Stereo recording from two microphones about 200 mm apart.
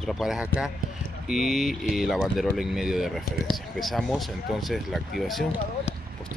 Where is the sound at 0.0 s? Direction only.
Centre (ahead or behind).